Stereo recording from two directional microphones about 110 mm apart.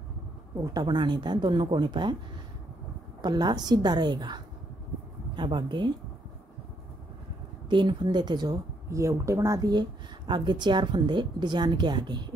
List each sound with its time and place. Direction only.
0.6 s speech: 40° right (ahead or behind)
3.2 s a woman's voice: 40° right (ahead or behind)
7.7 s speech: 45° right (ahead or behind)
8.9 s speech: 30° right (ahead or behind)